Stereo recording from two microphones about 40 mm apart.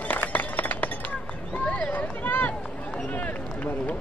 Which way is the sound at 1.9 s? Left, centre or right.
Left.